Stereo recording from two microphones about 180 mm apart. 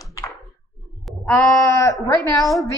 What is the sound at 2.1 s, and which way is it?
Speech, 20° left (ahead or behind).